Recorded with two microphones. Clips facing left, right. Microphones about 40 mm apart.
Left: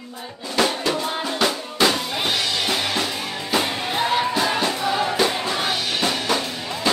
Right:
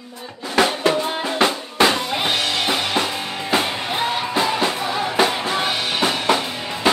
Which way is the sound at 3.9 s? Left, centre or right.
Centre.